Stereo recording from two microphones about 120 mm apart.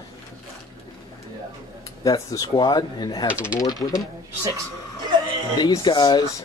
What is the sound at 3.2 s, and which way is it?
Speech, 10° right (ahead or behind).